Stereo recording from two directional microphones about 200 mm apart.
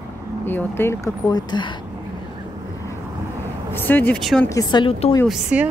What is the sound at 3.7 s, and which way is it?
Speech, 10° left (ahead or behind).